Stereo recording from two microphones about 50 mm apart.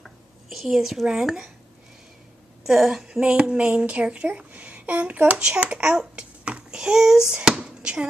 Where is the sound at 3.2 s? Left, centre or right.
Centre.